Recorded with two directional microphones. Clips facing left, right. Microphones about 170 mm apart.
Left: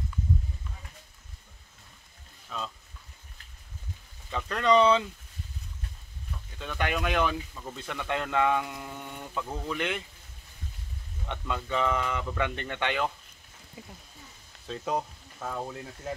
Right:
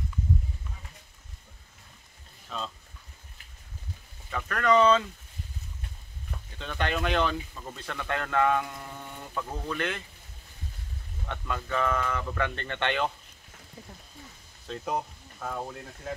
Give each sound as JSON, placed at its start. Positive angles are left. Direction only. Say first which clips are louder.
{"t": 2.5, "sound": "speech", "louder": "right 1 dB", "side_deg": 5}
{"t": 4.3, "sound": "speech", "louder": "even", "side_deg": 20}
{"t": 6.6, "sound": "speech", "louder": "even", "side_deg": 5}
{"t": 11.2, "sound": "speech", "louder": "left 1 dB", "side_deg": 20}
{"t": 14.7, "sound": "speech", "louder": "left 1 dB", "side_deg": 0}